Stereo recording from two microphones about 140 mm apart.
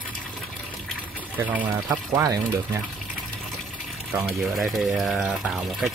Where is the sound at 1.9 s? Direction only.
25° right (ahead or behind).